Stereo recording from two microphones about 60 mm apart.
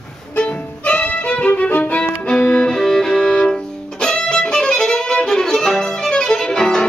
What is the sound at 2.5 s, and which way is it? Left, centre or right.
Music, centre.